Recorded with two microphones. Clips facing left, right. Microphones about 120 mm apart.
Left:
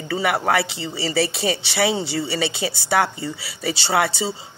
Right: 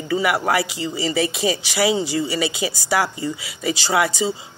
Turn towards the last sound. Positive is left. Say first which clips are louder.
# right 2 dB
turn(degrees=30)  # may be behind; listen again after turning